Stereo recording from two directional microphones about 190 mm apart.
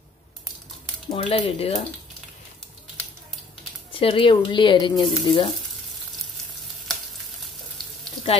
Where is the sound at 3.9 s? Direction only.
30° left (ahead or behind).